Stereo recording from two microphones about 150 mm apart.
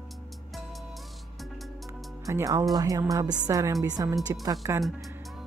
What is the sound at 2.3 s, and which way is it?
Speech, 20° right (ahead or behind).